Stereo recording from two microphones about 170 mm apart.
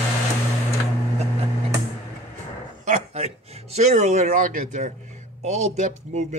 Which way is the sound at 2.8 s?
40° right (ahead or behind).